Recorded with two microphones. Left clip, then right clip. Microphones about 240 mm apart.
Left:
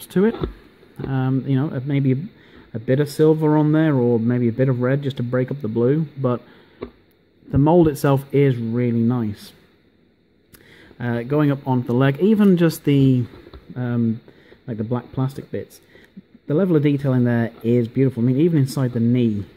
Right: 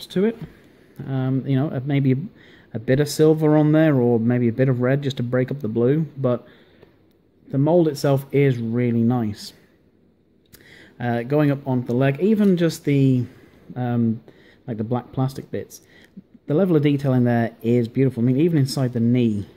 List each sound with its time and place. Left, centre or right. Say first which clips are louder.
0.2 s speech: left 3 dB; centre
7.4 s speech: left 2 dB; centre
11.0 s speech: even; centre